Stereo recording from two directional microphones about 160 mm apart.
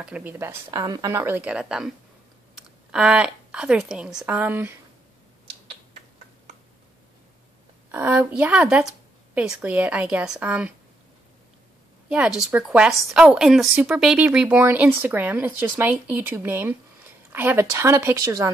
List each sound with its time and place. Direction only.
0.0 s a woman's voice: 10° right (ahead or behind)
2.9 s a woman's voice: 5° right (ahead or behind)
7.9 s a woman's voice: 10° right (ahead or behind)
12.1 s a woman's voice: 5° right (ahead or behind)